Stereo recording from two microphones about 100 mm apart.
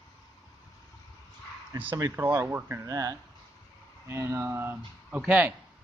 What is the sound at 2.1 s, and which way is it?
Speech, 20° right (ahead or behind).